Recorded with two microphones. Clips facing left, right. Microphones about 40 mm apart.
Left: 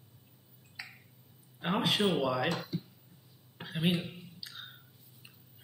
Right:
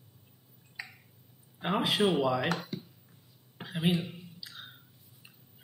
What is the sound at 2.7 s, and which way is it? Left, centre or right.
Speech, right.